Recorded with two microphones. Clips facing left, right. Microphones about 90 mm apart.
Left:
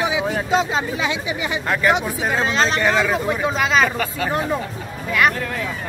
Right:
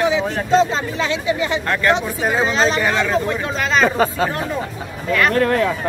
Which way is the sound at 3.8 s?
30° right (ahead or behind).